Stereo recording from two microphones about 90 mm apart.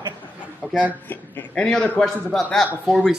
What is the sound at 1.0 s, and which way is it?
Speech, 20° left (ahead or behind).